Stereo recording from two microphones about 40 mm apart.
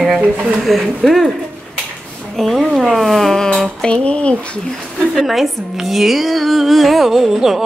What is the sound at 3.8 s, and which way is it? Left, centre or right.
Speech, left.